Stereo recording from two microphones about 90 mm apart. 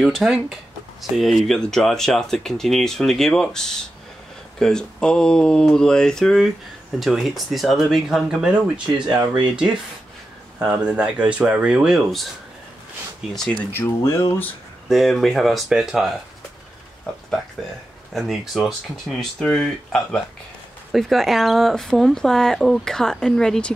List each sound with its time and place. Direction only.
0.0 s speech: centre (ahead or behind)
10.6 s speech: 10° right (ahead or behind)
13.5 s speech: 20° left (ahead or behind)
14.0 s speech: 30° left (ahead or behind)
14.9 s speech: centre (ahead or behind)
18.1 s speech: centre (ahead or behind)